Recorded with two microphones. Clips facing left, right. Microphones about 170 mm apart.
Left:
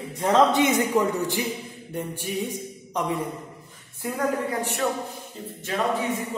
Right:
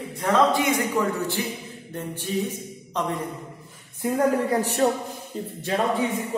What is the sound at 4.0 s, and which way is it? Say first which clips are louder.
Speech: right 6 dB; 20° right (ahead or behind).